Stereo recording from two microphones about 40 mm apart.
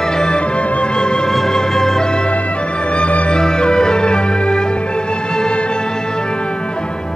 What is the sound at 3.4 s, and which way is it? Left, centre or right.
Music, centre.